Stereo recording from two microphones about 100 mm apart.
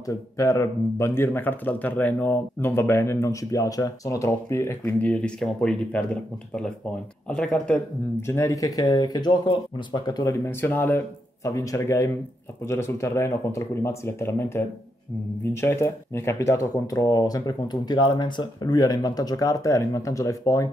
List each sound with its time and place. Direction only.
0.0 s speech: 35° left (ahead or behind)
5.0 s speech: 10° left (ahead or behind)
7.2 s speech: 5° left (ahead or behind)
8.2 s speech: 25° left (ahead or behind); by 10.3 s 40° left (ahead or behind)
10.4 s speech: 20° left (ahead or behind)
11.4 s speech: 35° left (ahead or behind)